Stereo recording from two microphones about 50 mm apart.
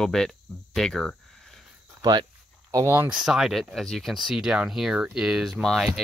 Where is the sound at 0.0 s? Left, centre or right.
Centre.